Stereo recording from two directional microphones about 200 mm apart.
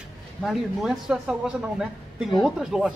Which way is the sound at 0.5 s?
Centre (ahead or behind).